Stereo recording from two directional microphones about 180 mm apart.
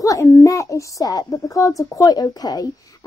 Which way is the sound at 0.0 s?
15° left (ahead or behind).